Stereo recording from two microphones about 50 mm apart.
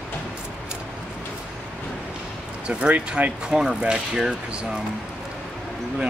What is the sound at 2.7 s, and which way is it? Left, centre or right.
Speech, right.